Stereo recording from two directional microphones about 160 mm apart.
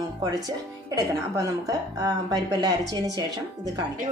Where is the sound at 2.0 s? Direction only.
25° right (ahead or behind).